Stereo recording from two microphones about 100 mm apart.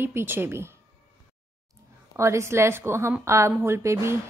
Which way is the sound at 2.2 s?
30° right (ahead or behind).